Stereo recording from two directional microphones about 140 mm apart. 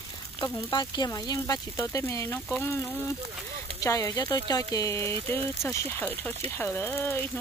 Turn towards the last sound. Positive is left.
turn(degrees=15)  # may be behind; listen again after turning